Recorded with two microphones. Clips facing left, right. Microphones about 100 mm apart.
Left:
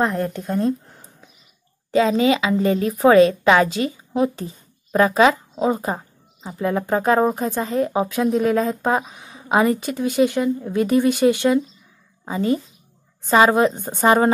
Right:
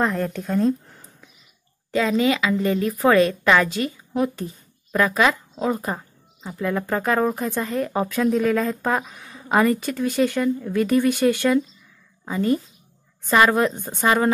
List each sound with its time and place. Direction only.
0.0 s speech: 5° left (ahead or behind)
1.9 s a woman's voice: 25° left (ahead or behind)
7.9 s a woman's voice: 15° left (ahead or behind); by 14.3 s 30° left (ahead or behind)